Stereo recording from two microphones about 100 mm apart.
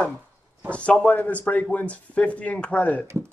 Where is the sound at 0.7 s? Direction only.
10° left (ahead or behind).